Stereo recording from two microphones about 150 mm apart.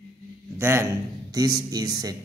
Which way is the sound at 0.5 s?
15° right (ahead or behind).